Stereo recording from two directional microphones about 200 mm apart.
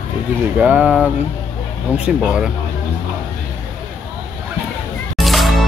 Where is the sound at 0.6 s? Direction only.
5° right (ahead or behind).